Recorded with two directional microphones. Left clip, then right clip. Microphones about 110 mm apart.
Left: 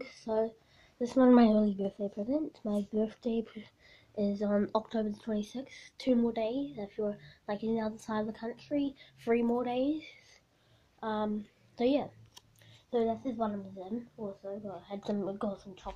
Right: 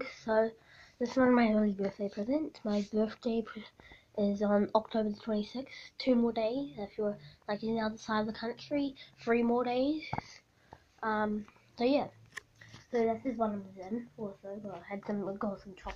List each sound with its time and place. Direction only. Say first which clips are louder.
0.0 s a sound: right 3 dB; 20° left (ahead or behind)
1.1 s speech: left 3 dB; 80° left
2.2 s speech: right 1 dB; 35° left (ahead or behind)
3.6 s speech: right 4 dB; 25° left (ahead or behind)
7.4 s a woman's voice: even; 55° left (ahead or behind)
8.2 s speech: right 1 dB; 35° left (ahead or behind)
13.1 s speech: right 1 dB; 30° left (ahead or behind)
14.1 s speech: left 2 dB; 5° left (ahead or behind)
15.0 s speech: left 2 dB; 45° left (ahead or behind)